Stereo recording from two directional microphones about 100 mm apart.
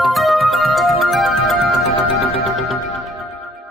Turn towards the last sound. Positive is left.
turn(degrees=0)  # may be behind; listen again after turning